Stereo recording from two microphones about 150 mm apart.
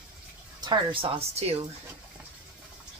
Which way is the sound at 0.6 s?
30° right (ahead or behind).